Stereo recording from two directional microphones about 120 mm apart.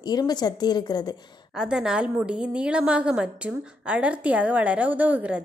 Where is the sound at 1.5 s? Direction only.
5° right (ahead or behind).